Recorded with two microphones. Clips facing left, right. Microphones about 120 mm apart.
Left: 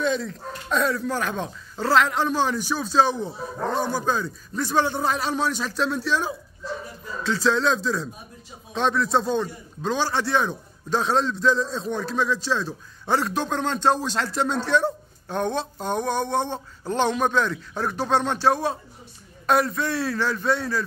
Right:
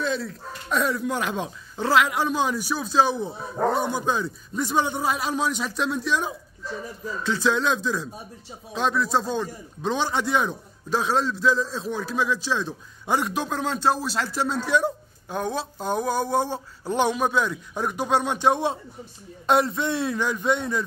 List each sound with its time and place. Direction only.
0.0 s a man's voice: centre (ahead or behind)
9.8 s a man's voice: 15° right (ahead or behind)